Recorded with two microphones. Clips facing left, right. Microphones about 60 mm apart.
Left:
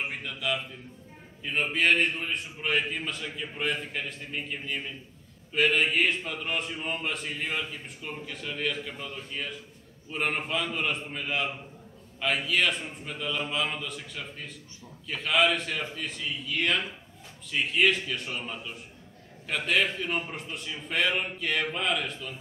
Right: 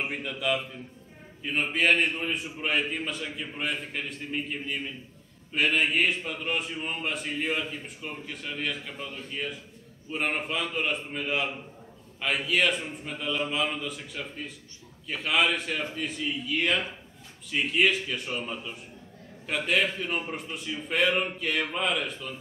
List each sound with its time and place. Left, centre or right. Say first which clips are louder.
0.0 s a man's voice: right 2 dB; centre